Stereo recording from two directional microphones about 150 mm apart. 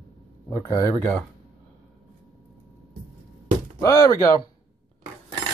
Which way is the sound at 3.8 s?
25° left (ahead or behind).